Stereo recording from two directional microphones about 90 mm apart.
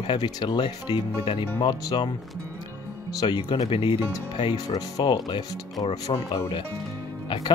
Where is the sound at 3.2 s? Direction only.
65° left (ahead or behind).